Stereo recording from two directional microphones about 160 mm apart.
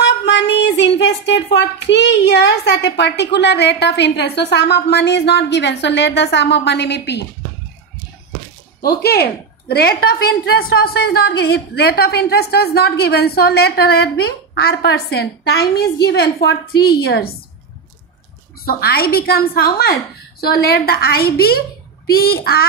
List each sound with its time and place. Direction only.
0.0 s speech: 90° left
8.8 s a woman's voice: 80° left
18.7 s a woman's voice: 75° left (ahead or behind)